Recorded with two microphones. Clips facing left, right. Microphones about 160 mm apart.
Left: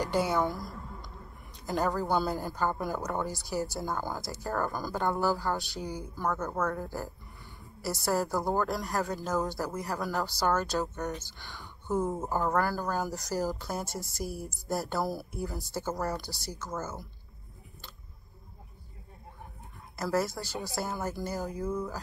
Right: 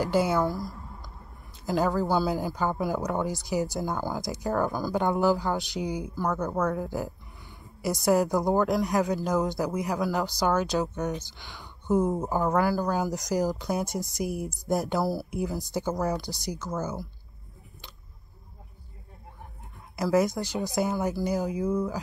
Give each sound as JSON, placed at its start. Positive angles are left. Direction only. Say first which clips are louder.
{"t": 0.0, "sound": "a woman's voice", "louder": "right 4 dB", "side_deg": -5}
{"t": 7.8, "sound": "a woman's voice", "louder": "right 6 dB", "side_deg": -15}
{"t": 20.2, "sound": "a woman's voice", "louder": "right 7 dB", "side_deg": -15}